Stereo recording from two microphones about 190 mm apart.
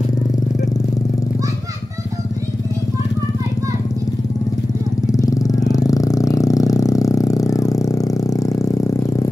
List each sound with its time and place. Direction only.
5.1 s vehicle: 15° left (ahead or behind)